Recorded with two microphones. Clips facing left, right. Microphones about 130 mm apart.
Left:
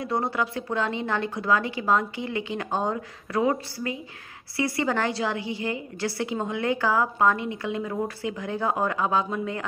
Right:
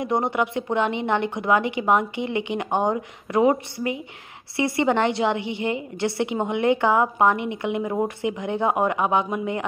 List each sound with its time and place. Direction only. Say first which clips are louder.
0.0 s a woman's voice: right 4 dB; 20° right (ahead or behind)